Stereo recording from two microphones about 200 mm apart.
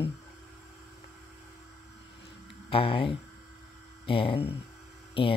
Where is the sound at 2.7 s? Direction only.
30° left (ahead or behind).